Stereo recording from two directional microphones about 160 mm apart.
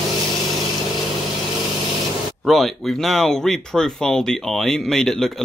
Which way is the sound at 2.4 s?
Centre (ahead or behind).